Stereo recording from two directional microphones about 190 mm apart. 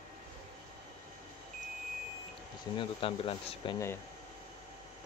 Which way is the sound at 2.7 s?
30° left (ahead or behind).